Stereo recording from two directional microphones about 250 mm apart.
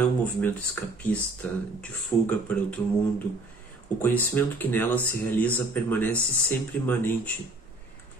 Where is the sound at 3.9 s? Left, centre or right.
Centre.